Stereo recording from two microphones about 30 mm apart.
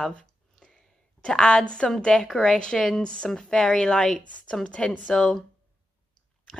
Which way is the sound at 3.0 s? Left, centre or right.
Left.